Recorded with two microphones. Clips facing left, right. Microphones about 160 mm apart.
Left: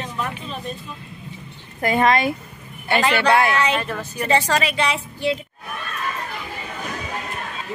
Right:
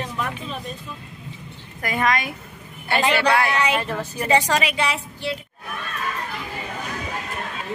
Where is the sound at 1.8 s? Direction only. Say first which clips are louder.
Left 5 dB; 30° left (ahead or behind).